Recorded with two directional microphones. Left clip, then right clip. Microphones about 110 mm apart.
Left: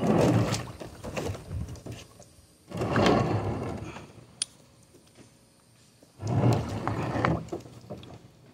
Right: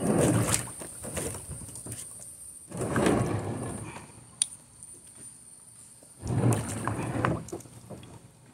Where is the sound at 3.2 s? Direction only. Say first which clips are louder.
Left 3 dB; 60° left (ahead or behind).